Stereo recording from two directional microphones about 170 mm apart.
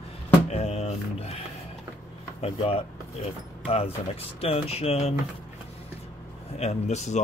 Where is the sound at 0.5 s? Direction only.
40° left (ahead or behind).